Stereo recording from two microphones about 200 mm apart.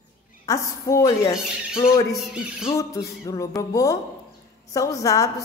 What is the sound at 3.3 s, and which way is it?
A woman's voice, 15° left (ahead or behind).